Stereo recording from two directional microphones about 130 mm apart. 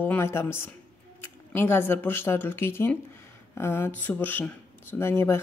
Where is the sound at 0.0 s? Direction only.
20° left (ahead or behind).